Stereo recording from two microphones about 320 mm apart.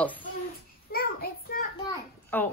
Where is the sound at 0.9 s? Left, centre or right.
Left.